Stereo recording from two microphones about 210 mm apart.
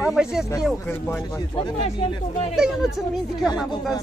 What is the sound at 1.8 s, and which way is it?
Speech, 25° left (ahead or behind).